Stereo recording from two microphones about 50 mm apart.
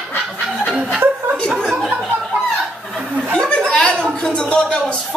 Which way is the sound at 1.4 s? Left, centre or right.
Centre.